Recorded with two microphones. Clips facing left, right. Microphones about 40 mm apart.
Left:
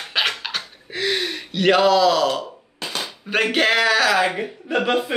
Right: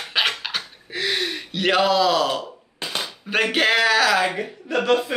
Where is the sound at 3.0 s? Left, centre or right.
Centre.